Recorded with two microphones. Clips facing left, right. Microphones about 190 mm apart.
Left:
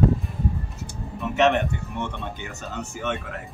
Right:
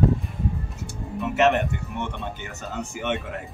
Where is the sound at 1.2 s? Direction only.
Centre (ahead or behind).